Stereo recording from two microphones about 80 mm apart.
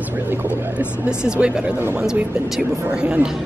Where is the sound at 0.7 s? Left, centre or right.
Centre.